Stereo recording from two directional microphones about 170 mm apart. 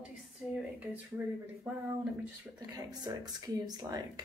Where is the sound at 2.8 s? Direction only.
25° right (ahead or behind).